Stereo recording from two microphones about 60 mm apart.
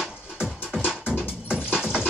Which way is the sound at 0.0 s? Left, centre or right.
Centre.